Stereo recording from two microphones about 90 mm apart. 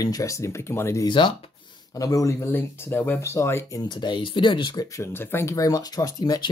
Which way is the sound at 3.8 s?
55° left (ahead or behind).